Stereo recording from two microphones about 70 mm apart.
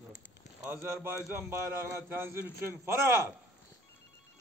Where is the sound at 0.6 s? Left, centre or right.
Right.